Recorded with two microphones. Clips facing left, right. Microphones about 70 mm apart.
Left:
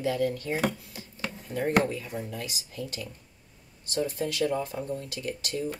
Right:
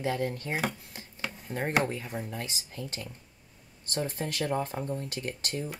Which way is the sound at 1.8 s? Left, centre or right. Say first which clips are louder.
Left 2 dB; right.